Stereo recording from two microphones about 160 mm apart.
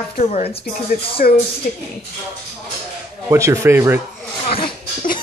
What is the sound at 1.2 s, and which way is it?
Speech, 55° left (ahead or behind).